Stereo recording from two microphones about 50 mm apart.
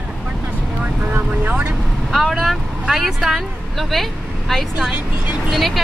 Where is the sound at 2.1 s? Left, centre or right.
Centre.